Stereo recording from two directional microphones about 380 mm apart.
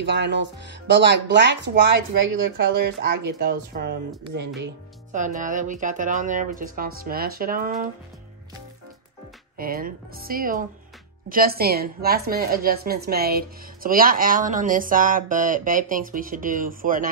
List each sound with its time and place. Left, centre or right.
0.0 s a woman's voice: right
5.1 s a woman's voice: centre
9.6 s a woman's voice: right